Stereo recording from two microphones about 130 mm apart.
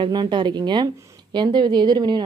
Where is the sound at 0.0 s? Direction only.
35° right (ahead or behind).